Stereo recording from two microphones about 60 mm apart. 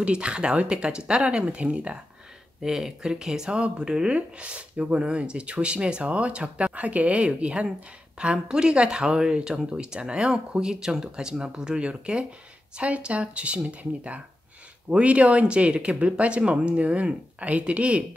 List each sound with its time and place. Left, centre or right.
0.0 s speech: centre
2.6 s speech: centre